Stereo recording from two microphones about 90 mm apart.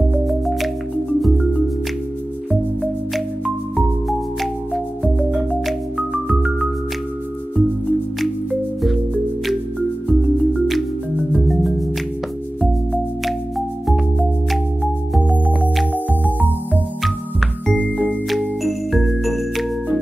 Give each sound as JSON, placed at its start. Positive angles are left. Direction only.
{"t": 0.1, "sound": "music", "side_deg": 0}
{"t": 5.5, "sound": "music", "side_deg": 0}
{"t": 10.0, "sound": "music", "side_deg": 0}
{"t": 16.3, "sound": "music", "side_deg": -20}
{"t": 17.0, "sound": "music", "side_deg": 0}
{"t": 17.7, "sound": "music", "side_deg": 15}
{"t": 18.3, "sound": "music", "side_deg": 0}